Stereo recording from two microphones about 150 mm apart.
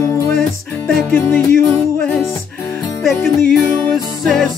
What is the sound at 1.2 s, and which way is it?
Music, 20° left (ahead or behind).